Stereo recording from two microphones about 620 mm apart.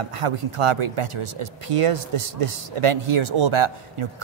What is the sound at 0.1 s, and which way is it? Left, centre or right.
A man's voice, right.